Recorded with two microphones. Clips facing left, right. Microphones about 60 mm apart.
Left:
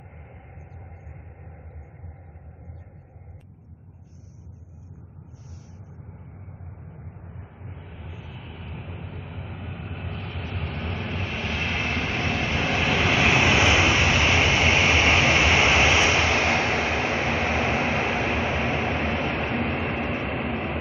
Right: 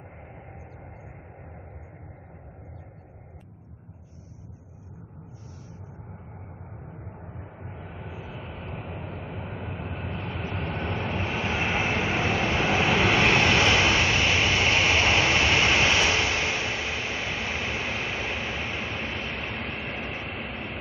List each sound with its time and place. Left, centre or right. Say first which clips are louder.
7.8 s vehicle: right 5 dB; right; by 16.1 s left
16.3 s vehicle: left 6 dB; left